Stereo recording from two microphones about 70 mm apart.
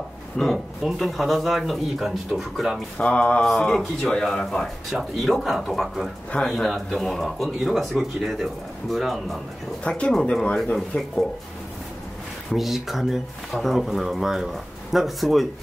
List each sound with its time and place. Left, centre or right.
0.4 s speech: centre
3.0 s speech: centre
4.9 s speech: centre
9.8 s speech: centre
12.4 s speech: centre